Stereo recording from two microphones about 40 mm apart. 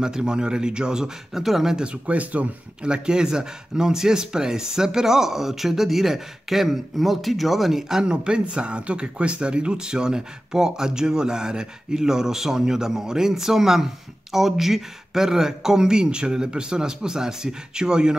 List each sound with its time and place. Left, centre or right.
0.0 s speech: centre
1.8 s speech: right
2.8 s speech: right
8.0 s speech: right